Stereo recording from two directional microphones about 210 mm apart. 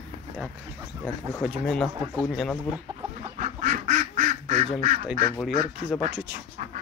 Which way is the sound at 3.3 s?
40° right (ahead or behind).